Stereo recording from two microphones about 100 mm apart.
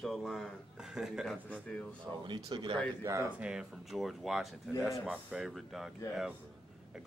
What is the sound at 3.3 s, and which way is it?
Speech, 10° right (ahead or behind).